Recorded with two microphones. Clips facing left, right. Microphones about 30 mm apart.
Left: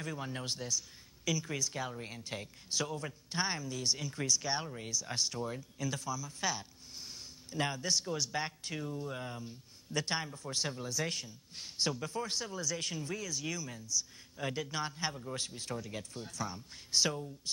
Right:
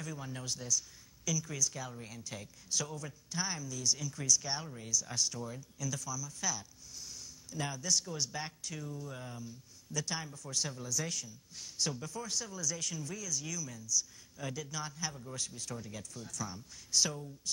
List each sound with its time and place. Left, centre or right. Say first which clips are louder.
0.0 s speech: left 3 dB; left